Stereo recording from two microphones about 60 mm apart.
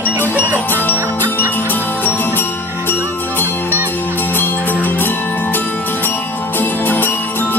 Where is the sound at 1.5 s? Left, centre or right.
Left.